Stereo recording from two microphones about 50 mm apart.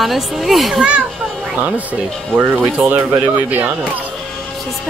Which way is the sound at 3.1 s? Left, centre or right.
Right.